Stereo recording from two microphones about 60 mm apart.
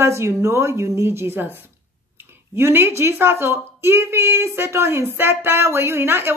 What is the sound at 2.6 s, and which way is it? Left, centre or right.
A woman's voice, right.